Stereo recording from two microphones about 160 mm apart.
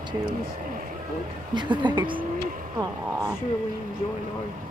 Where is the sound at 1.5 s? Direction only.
30° right (ahead or behind).